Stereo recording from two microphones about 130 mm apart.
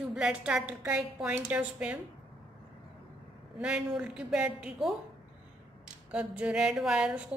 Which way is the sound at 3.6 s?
5° right (ahead or behind).